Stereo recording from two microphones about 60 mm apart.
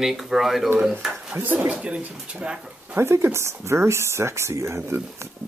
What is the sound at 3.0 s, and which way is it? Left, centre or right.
Speech, right.